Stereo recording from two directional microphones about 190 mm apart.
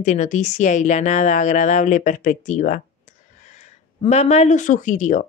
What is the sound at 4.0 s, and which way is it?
Speech, 35° left (ahead or behind).